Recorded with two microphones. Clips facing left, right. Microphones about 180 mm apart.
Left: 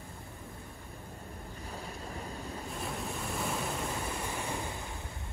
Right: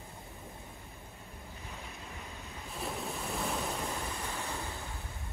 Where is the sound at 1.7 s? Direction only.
35° left (ahead or behind).